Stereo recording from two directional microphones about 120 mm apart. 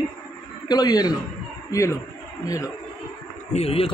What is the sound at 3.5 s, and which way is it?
Speech, 55° left (ahead or behind).